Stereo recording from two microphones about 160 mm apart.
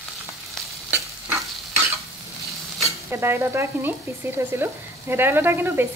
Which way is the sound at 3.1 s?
15° right (ahead or behind).